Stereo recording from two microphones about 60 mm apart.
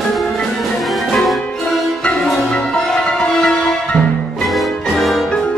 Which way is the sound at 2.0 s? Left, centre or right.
Centre.